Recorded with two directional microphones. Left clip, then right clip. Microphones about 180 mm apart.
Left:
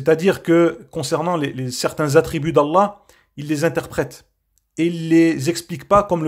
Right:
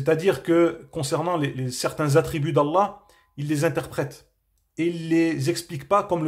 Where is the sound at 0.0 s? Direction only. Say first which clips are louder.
Left 5 dB; 30° left (ahead or behind).